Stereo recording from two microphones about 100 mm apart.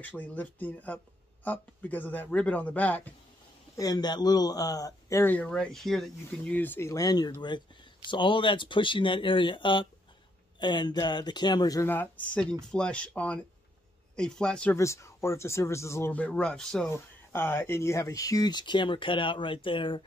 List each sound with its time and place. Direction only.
0.0 s speech: 15° left (ahead or behind)
3.7 s speech: 40° left (ahead or behind)
5.2 s speech: 15° left (ahead or behind)
6.5 s speech: 20° left (ahead or behind)
6.9 s speech: 40° left (ahead or behind)
8.1 s speech: 55° left (ahead or behind)
11.8 s speech: 20° left (ahead or behind)
12.4 s speech: 10° left (ahead or behind)
14.8 s speech: 30° left (ahead or behind)
16.1 s speech: 15° left (ahead or behind)
16.9 s speech: 25° left (ahead or behind); by 20.0 s 55° left (ahead or behind)